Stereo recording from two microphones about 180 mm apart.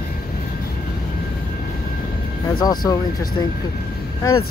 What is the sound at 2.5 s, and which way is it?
Speech, 20° left (ahead or behind).